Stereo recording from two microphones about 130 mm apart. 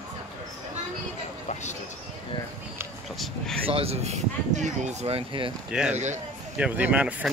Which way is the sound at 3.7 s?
50° right (ahead or behind).